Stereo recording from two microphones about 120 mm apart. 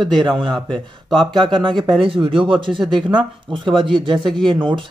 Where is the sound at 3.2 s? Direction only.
45° right (ahead or behind).